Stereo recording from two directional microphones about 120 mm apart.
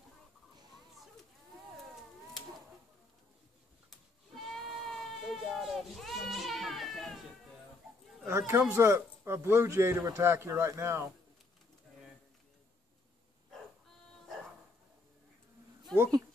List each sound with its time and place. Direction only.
4.4 s sheep: centre (ahead or behind)
8.3 s speech: 20° right (ahead or behind)
15.9 s a sound: 5° left (ahead or behind)